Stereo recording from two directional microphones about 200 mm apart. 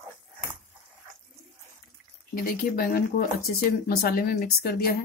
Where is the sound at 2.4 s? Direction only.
45° left (ahead or behind).